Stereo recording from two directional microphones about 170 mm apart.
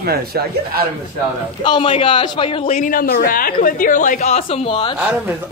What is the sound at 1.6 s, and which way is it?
A man's voice, 30° left (ahead or behind).